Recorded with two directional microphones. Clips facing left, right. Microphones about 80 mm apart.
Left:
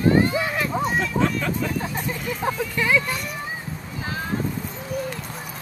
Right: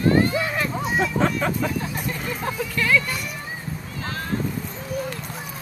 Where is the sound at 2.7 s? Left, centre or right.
Centre.